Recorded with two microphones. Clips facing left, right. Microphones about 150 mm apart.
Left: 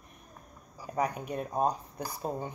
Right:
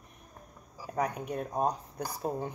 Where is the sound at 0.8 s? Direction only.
5° left (ahead or behind).